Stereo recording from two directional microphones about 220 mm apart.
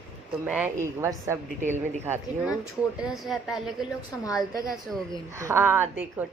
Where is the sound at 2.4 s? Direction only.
5° right (ahead or behind).